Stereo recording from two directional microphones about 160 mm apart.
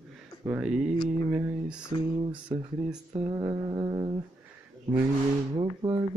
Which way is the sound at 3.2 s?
25° right (ahead or behind).